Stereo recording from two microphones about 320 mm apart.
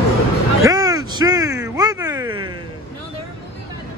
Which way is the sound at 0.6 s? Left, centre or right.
Centre.